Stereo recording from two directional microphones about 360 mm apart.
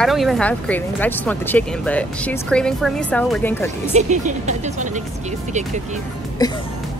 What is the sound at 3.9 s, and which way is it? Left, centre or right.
Speech, centre.